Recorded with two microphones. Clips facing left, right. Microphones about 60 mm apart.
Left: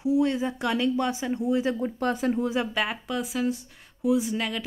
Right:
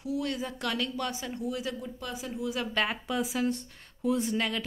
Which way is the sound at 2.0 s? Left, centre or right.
Left.